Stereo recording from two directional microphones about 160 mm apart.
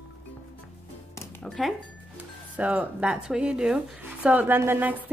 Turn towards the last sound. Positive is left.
turn(degrees=-10)  # may be behind; listen again after turning